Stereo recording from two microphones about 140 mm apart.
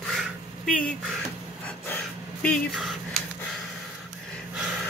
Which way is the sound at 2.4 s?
Centre (ahead or behind).